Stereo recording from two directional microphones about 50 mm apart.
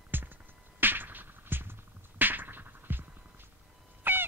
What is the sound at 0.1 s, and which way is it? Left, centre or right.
Music, right.